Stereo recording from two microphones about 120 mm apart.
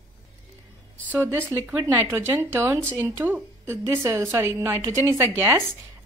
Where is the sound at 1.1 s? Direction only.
20° right (ahead or behind).